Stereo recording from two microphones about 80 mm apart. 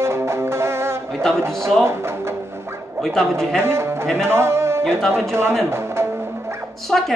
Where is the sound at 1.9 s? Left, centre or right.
Right.